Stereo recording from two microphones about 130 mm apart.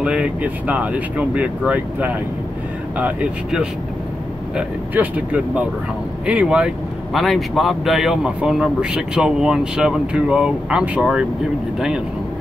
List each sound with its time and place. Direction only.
0.0 s speech: 10° right (ahead or behind)